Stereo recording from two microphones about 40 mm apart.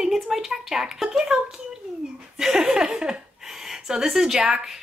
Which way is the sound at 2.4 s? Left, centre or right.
Centre.